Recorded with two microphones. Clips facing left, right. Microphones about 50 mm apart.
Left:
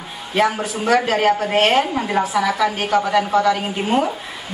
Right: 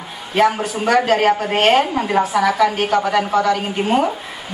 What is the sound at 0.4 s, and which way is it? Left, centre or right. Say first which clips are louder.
A man's voice: right 3 dB; centre.